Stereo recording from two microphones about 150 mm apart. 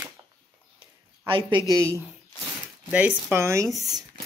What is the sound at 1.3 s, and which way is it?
Speech, 35° right (ahead or behind).